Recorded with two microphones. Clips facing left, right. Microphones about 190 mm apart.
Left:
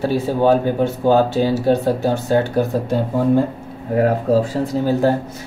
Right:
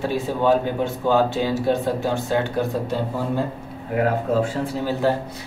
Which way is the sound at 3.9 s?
35° left (ahead or behind).